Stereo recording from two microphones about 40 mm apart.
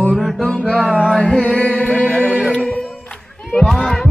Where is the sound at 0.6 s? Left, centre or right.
Left.